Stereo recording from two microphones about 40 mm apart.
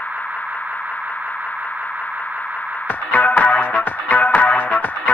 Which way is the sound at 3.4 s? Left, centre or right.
Left.